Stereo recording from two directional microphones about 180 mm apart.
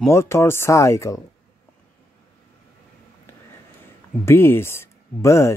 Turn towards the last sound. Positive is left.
turn(degrees=15)  # may be behind; listen again after turning